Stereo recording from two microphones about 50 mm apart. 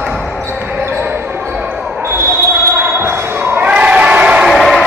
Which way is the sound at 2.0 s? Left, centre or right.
Right.